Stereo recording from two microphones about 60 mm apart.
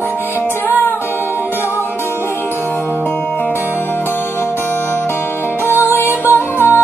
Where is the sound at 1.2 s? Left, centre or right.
Right.